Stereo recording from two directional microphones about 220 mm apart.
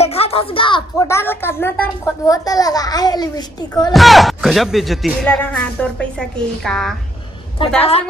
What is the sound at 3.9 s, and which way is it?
Speech, centre (ahead or behind).